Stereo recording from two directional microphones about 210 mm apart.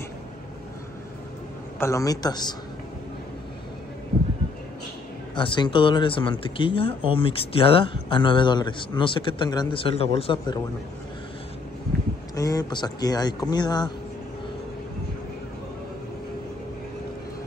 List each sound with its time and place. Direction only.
1.8 s a woman's voice: 15° left (ahead or behind)
5.3 s a man's voice: 20° left (ahead or behind)
12.4 s a man's voice: 15° left (ahead or behind)